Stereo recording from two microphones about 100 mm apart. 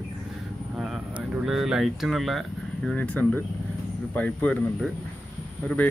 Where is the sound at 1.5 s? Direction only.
5° right (ahead or behind).